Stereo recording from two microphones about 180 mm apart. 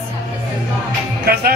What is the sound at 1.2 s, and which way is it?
Music, 60° right (ahead or behind).